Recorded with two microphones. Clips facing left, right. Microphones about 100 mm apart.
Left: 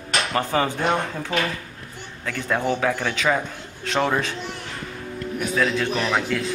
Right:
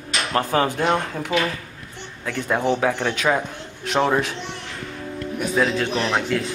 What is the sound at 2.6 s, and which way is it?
A man's voice, centre (ahead or behind).